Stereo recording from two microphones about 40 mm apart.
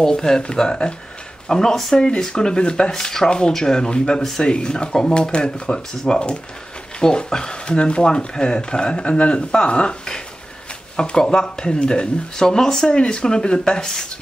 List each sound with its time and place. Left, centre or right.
0.0 s speech: centre